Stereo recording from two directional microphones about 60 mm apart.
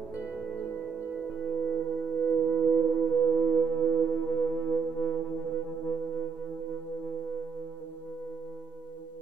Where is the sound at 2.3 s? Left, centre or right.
Centre.